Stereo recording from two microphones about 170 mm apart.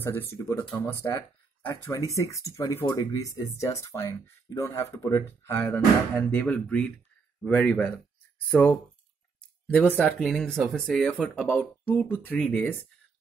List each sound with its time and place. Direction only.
0.0 s speech: 15° left (ahead or behind)